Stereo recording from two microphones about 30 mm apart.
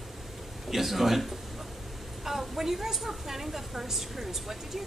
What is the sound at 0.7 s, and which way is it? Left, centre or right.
A woman's voice, centre.